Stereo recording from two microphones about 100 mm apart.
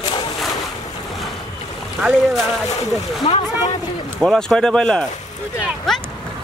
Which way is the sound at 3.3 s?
70° left (ahead or behind).